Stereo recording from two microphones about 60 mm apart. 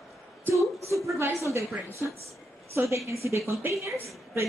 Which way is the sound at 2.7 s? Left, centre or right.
Right.